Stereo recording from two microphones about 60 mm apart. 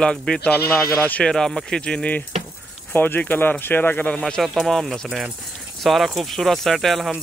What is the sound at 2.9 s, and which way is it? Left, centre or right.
Speech, left.